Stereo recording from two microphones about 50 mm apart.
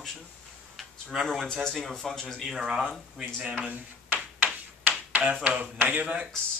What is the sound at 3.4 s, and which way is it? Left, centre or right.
Speech, right.